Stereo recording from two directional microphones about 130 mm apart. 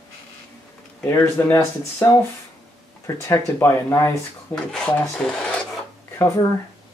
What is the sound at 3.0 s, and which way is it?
Speech, 20° left (ahead or behind).